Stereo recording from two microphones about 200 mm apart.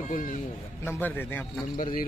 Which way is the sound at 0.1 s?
40° left (ahead or behind).